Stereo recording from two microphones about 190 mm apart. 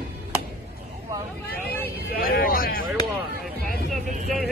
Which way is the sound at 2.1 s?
50° left (ahead or behind).